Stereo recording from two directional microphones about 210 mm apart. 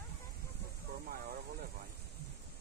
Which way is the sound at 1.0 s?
45° right (ahead or behind).